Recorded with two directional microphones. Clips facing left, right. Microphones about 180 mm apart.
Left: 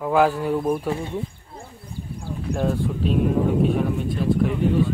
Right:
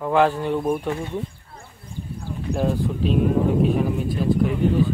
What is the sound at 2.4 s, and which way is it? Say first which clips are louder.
Speech: right 1 dB; centre (ahead or behind).